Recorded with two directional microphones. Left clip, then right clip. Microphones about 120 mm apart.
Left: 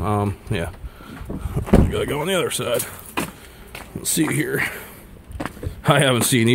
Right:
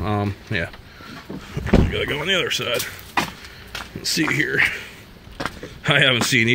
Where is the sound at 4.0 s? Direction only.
25° left (ahead or behind).